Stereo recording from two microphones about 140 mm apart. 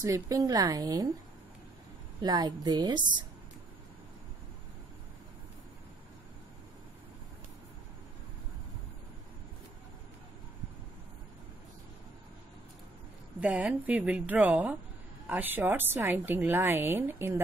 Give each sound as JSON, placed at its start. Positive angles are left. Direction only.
{"t": 0.0, "sound": "speech", "side_deg": -25}
{"t": 2.2, "sound": "speech", "side_deg": -30}
{"t": 13.4, "sound": "a woman's voice", "side_deg": -10}